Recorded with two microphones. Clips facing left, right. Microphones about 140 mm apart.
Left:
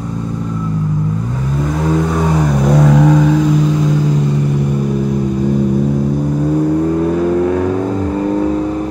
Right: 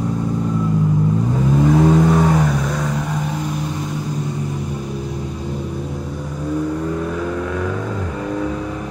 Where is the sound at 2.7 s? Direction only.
80° left.